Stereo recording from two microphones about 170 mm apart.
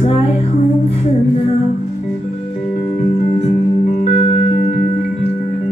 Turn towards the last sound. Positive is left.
turn(degrees=40)  # may be behind; listen again after turning